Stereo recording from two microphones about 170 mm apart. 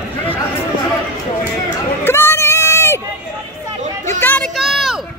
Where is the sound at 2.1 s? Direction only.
15° left (ahead or behind).